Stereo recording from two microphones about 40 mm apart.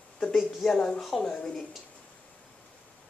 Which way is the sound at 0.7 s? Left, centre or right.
Centre.